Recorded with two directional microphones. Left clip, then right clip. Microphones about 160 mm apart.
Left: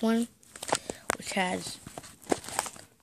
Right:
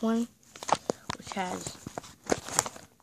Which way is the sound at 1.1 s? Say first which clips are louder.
Left 4 dB; 30° left (ahead or behind).